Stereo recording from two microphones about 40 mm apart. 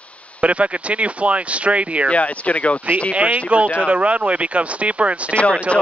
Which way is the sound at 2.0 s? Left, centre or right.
Left.